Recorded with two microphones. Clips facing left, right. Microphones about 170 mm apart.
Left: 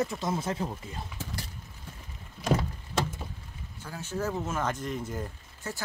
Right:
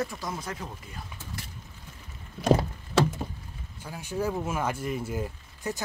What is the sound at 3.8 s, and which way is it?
Speech, 15° right (ahead or behind).